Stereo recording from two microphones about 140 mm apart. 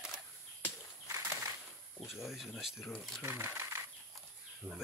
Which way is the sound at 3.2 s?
15° right (ahead or behind).